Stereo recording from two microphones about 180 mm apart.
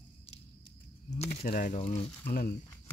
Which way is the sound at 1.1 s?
40° left (ahead or behind).